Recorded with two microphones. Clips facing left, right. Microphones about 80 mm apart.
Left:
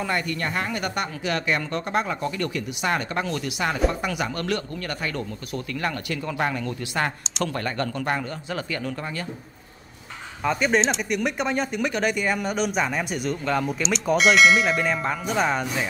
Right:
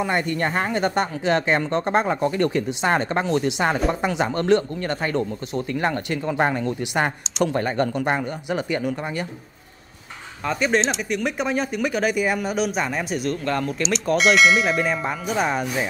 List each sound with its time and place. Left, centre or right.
0.0 s speech: right
10.4 s speech: centre